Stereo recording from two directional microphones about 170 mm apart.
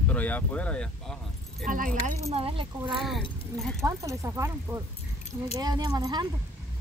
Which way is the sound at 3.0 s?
Centre (ahead or behind).